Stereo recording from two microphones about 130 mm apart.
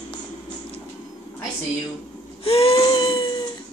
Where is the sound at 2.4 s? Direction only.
45° left (ahead or behind).